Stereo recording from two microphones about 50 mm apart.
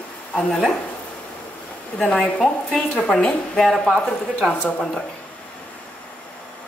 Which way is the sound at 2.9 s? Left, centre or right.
Centre.